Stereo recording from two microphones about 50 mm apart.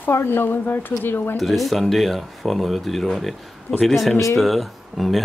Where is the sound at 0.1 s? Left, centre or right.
Left.